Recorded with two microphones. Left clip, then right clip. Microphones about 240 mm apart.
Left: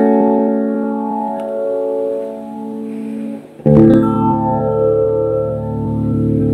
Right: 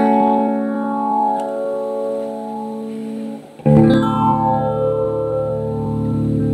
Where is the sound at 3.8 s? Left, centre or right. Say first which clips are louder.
Left 4 dB; right.